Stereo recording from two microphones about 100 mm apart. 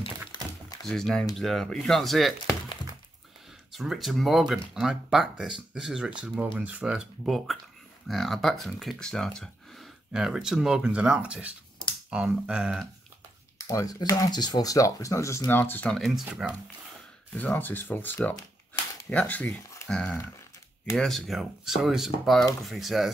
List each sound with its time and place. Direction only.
0.3 s typing: 45° left (ahead or behind)
0.8 s speech: 5° left (ahead or behind)
3.7 s speech: centre (ahead or behind)
13.6 s speech: 35° left (ahead or behind)
15.9 s speech: centre (ahead or behind)
17.4 s speech: 15° left (ahead or behind); by 23.1 s centre (ahead or behind)